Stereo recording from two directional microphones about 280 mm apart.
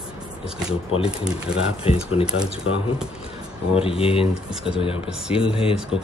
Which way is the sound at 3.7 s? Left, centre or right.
Centre.